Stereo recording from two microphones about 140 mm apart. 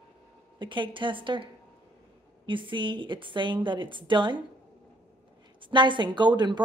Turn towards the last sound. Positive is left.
turn(degrees=-30)  # may be behind; listen again after turning